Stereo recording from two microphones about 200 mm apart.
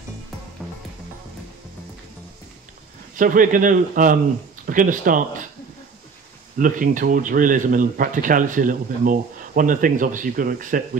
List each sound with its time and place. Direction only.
3.2 s a man's voice: 40° right (ahead or behind)
6.6 s speech: 40° right (ahead or behind)